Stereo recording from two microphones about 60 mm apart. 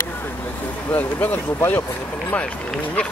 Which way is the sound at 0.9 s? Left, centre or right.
Left.